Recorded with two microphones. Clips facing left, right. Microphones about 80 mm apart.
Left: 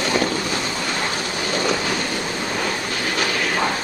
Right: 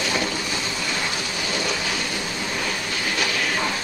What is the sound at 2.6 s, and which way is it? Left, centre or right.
Train, left.